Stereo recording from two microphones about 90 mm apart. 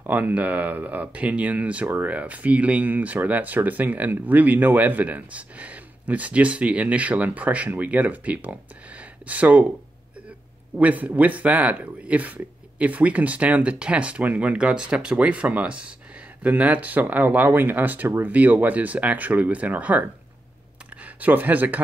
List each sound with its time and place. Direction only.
0.0 s speech: 20° right (ahead or behind)
10.8 s speech: 15° right (ahead or behind)